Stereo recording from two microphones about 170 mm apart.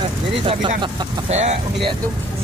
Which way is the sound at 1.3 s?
40° right (ahead or behind).